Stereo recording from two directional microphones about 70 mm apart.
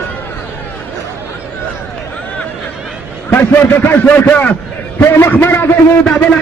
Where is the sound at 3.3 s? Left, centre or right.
Left.